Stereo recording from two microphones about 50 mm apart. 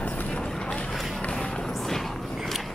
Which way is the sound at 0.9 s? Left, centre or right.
Centre.